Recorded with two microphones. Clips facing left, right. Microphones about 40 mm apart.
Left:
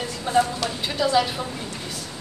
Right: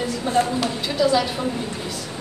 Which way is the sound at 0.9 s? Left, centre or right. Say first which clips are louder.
Right 2 dB; centre.